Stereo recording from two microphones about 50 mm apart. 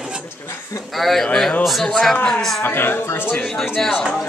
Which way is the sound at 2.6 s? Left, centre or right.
Left.